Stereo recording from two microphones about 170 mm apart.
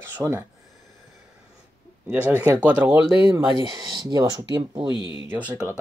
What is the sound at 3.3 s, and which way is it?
Speech, 30° right (ahead or behind).